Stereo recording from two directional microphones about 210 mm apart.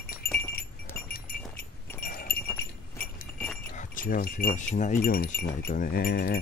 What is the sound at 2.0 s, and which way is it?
Sheep, 45° left (ahead or behind).